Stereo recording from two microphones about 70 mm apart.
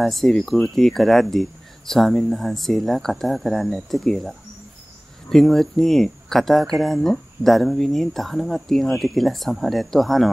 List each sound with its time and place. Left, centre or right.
0.0 s speech: centre
5.3 s speech: centre